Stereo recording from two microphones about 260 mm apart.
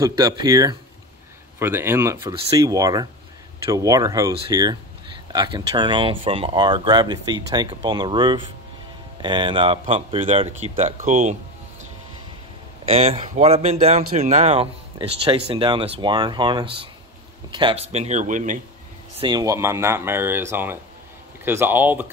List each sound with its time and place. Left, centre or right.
0.0 s speech: centre
12.8 s speech: right
19.1 s speech: centre